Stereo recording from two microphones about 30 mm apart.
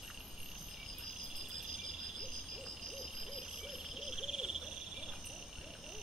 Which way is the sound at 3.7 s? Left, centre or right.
Centre.